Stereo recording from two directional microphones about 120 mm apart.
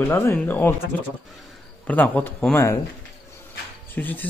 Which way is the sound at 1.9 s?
15° left (ahead or behind).